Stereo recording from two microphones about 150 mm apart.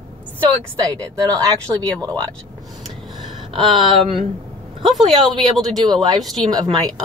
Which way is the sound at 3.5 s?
35° right (ahead or behind).